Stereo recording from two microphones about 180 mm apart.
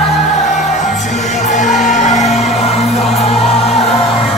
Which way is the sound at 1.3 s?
40° left (ahead or behind).